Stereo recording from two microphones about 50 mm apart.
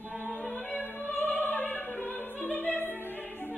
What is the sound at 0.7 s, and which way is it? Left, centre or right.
Opera, left.